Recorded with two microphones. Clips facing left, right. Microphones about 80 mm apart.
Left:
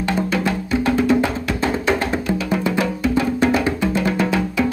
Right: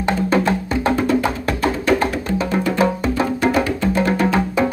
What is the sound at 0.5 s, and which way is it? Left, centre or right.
Music, right.